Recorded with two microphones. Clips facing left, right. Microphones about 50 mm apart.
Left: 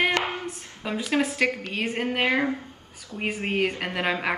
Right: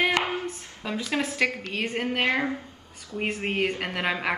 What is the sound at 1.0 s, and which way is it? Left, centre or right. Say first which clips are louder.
A woman's voice: left 2 dB; left.